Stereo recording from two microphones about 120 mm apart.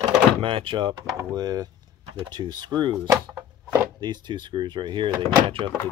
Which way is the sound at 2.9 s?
20° right (ahead or behind).